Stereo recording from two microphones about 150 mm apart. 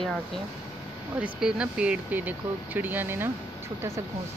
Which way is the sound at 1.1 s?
5° right (ahead or behind).